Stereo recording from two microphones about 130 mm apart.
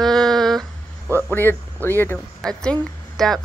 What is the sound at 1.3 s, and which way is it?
Speech, 15° left (ahead or behind).